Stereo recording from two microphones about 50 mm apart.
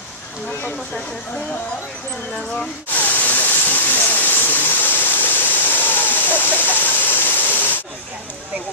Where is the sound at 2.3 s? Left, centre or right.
Centre.